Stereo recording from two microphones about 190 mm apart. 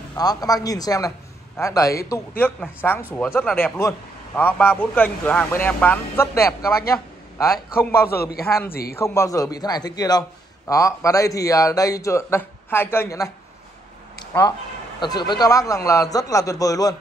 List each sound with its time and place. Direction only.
0.1 s a man's voice: 20° left (ahead or behind)
6.9 s a sound: 15° left (ahead or behind)
8.1 s a man's voice: 55° left (ahead or behind)
8.9 s a man's voice: 15° left (ahead or behind)
14.1 s a sound: 20° left (ahead or behind)
15.0 s a man's voice: 25° left (ahead or behind)